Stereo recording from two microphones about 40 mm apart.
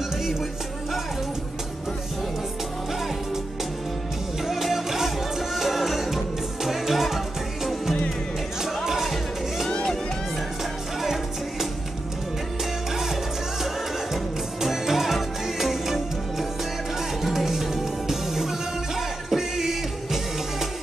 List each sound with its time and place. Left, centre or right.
0.2 s music: centre
4.5 s music: centre
12.9 s music: centre